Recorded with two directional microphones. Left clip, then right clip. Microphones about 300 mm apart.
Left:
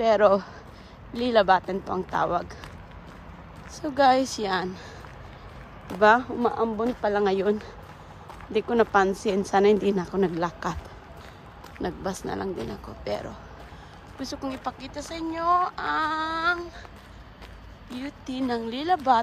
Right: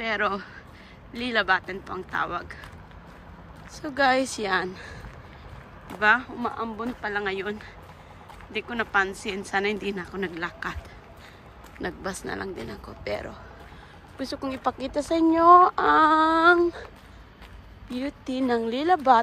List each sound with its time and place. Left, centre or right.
0.0 s speech: centre
3.7 s speech: centre
5.9 s speech: centre
8.5 s speech: centre
11.8 s speech: centre
17.8 s speech: centre